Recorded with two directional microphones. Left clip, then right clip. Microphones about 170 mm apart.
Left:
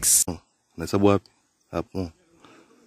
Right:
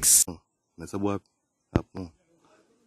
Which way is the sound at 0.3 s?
45° left (ahead or behind).